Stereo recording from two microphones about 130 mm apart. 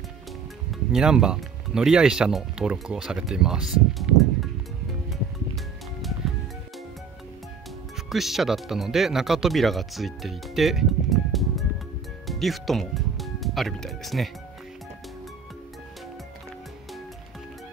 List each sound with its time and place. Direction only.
0.9 s speech: 5° right (ahead or behind)
4.0 s music: centre (ahead or behind)
8.1 s speech: centre (ahead or behind)